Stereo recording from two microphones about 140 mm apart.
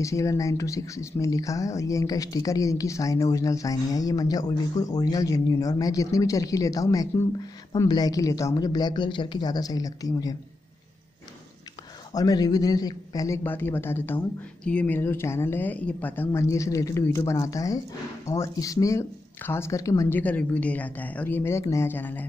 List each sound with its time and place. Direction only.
0.0 s speech: 20° left (ahead or behind)
12.1 s a man's voice: 25° left (ahead or behind)